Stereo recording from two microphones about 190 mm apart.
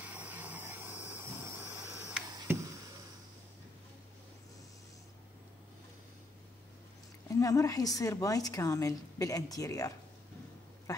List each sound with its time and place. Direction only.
0.0 s vehicle: 10° right (ahead or behind)
7.2 s a woman's voice: 15° left (ahead or behind)
10.9 s a sound: 20° left (ahead or behind)